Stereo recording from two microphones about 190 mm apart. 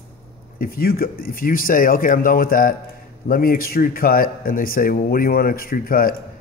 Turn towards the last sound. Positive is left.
turn(degrees=50)  # may be behind; listen again after turning